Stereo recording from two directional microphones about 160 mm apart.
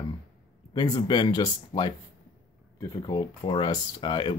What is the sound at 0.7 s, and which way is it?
Speech, 25° left (ahead or behind).